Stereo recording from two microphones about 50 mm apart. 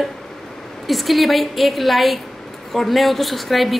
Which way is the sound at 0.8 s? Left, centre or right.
Centre.